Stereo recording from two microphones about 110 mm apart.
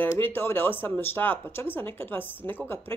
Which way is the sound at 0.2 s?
20° left (ahead or behind).